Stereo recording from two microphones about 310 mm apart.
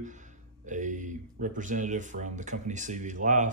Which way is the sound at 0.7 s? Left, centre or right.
Right.